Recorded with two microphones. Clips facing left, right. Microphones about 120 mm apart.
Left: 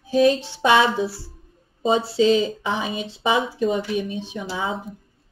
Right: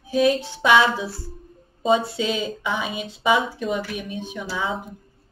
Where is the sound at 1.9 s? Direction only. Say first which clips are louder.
Left 3 dB; 30° left (ahead or behind).